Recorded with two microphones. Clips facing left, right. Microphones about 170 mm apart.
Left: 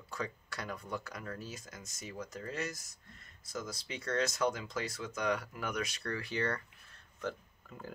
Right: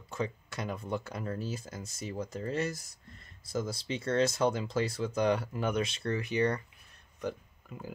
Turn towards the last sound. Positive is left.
turn(degrees=-10)  # may be behind; listen again after turning